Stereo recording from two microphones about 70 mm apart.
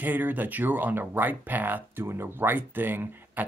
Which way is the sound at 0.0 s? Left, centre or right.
Right.